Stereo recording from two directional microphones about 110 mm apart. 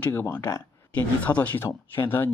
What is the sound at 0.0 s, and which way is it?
Speech, 20° left (ahead or behind).